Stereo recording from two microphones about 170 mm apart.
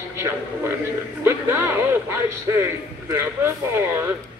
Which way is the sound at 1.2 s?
15° right (ahead or behind).